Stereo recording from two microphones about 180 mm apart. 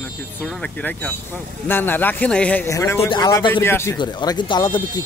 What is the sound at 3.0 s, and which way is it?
Speech, 25° left (ahead or behind).